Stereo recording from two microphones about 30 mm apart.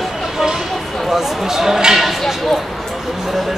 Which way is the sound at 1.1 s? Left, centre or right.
Centre.